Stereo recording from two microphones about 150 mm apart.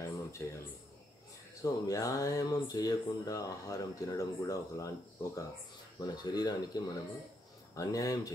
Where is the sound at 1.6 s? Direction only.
25° left (ahead or behind).